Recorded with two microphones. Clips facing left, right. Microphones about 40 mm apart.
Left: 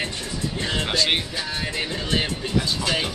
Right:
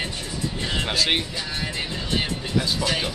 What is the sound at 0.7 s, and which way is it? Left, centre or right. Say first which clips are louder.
Speech: left 1 dB; centre.